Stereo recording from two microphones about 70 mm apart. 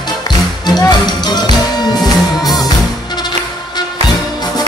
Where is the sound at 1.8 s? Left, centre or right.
Left.